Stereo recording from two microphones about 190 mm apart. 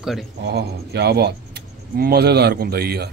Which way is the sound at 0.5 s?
60° right (ahead or behind).